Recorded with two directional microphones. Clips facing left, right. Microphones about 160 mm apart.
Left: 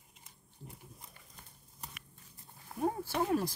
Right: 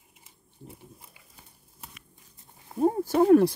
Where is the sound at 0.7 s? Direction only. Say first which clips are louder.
Right 5 dB; 5° right (ahead or behind).